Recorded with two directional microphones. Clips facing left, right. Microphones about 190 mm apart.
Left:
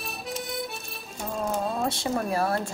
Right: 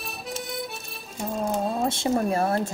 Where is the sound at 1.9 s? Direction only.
25° right (ahead or behind).